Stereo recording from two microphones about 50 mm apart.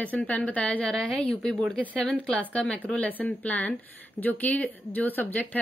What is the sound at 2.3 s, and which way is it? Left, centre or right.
A woman's voice, left.